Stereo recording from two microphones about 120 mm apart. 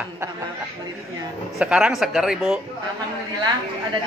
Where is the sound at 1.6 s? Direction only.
5° right (ahead or behind).